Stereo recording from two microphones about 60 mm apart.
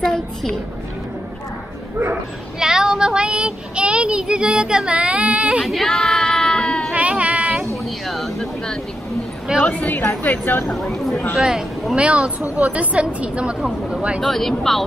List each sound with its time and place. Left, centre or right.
0.0 s a child's voice: centre
2.6 s child singing: centre
5.7 s child singing: centre
6.9 s a sound: right
7.7 s a sound: centre
9.7 s a woman's voice: left
10.4 s speech: left
10.7 s speech: centre
11.3 s a woman's voice: centre
14.2 s speech: centre